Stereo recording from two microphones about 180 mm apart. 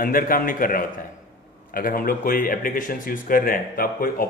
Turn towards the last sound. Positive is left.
turn(degrees=55)  # may be behind; listen again after turning